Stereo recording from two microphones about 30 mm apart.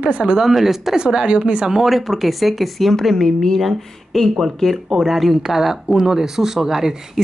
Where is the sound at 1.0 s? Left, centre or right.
Right.